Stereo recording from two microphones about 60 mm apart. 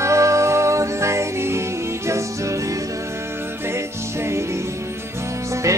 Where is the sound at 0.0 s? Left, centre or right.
Right.